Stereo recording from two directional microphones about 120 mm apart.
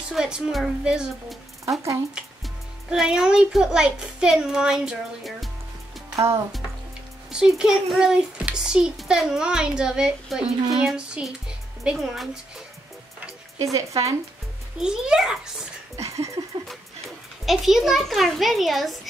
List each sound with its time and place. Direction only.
0.1 s a child's voice: 5° right (ahead or behind)
1.7 s speech: 25° right (ahead or behind)
2.9 s a child's voice: 5° right (ahead or behind)
6.1 s speech: 20° right (ahead or behind)
7.2 s a child's voice: 5° right (ahead or behind)
13.7 s speech: 25° right (ahead or behind)
14.8 s a child's voice: 5° right (ahead or behind)
16.0 s a sound: 25° right (ahead or behind)
17.5 s a child's voice: 5° right (ahead or behind)